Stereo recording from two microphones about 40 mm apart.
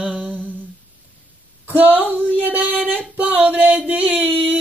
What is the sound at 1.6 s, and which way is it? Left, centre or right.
Speech, right.